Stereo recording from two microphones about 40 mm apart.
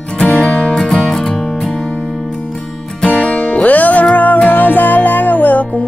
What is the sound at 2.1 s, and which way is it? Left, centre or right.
Music, centre.